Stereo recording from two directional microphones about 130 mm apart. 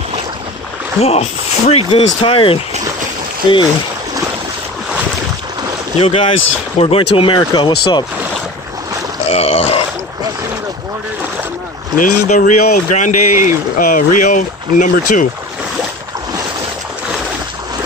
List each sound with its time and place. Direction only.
1.0 s speech: 50° left (ahead or behind)
1.9 s speech: 40° left (ahead or behind)
5.9 s speech: 50° left (ahead or behind)
9.3 s speech: 50° left (ahead or behind)
12.0 s speech: 85° left